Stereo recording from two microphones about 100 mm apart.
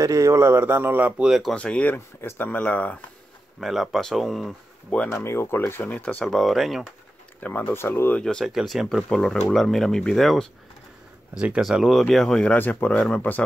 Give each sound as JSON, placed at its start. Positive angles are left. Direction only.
{"t": 0.0, "sound": "speech", "side_deg": -35}
{"t": 1.5, "sound": "speech", "side_deg": 10}
{"t": 3.6, "sound": "speech", "side_deg": 0}
{"t": 5.0, "sound": "speech", "side_deg": 25}
{"t": 6.2, "sound": "speech", "side_deg": 0}
{"t": 7.3, "sound": "speech", "side_deg": 15}
{"t": 8.2, "sound": "speech", "side_deg": 10}
{"t": 8.5, "sound": "speech", "side_deg": -5}
{"t": 11.3, "sound": "speech", "side_deg": -10}
{"t": 12.5, "sound": "speech", "side_deg": 15}